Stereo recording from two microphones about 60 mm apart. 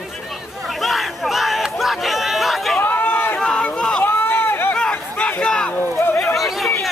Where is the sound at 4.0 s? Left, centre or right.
Left.